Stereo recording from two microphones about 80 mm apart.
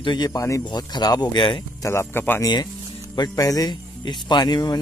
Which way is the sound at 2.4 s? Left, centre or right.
Left.